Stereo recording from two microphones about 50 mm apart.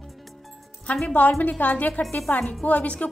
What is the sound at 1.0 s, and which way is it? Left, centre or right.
A woman's voice, left.